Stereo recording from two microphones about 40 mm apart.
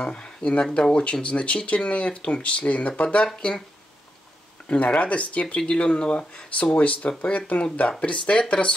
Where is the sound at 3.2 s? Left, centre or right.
Left.